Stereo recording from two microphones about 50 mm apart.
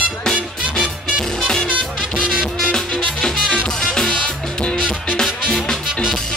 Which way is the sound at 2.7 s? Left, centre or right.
Centre.